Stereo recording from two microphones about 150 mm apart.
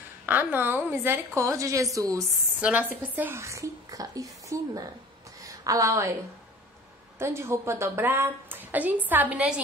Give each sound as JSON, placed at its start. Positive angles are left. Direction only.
{"t": 0.3, "sound": "speech", "side_deg": -10}
{"t": 2.6, "sound": "speech", "side_deg": -10}
{"t": 5.4, "sound": "a sound", "side_deg": -20}
{"t": 7.2, "sound": "a woman's voice", "side_deg": -15}